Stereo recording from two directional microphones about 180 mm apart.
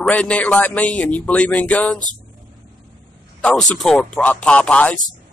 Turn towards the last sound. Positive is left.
turn(degrees=5)  # may be behind; listen again after turning